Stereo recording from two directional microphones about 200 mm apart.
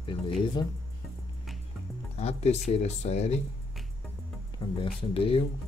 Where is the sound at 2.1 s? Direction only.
30° left (ahead or behind).